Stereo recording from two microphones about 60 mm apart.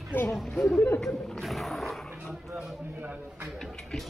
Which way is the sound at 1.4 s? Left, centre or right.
Centre.